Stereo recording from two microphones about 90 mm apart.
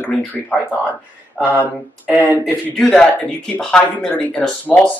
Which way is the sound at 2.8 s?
5° left (ahead or behind).